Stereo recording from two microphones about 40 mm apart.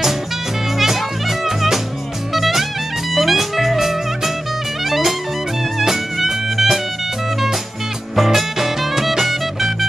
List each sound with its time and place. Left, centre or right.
0.7 s music: centre
8.2 s music: centre